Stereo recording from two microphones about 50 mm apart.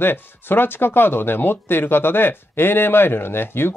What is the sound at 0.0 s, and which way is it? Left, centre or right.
Speech, left.